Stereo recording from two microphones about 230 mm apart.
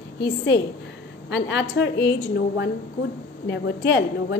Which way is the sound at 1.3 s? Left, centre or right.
Left.